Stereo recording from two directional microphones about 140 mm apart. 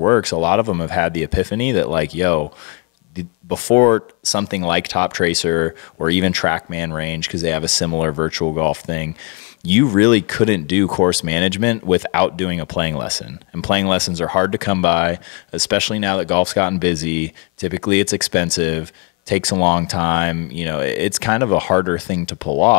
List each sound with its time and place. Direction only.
0.0 s speech: 20° left (ahead or behind)